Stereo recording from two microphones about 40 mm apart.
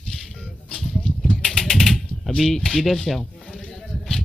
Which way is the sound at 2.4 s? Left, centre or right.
Centre.